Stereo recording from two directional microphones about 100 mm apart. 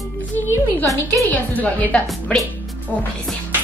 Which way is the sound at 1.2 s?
15° left (ahead or behind).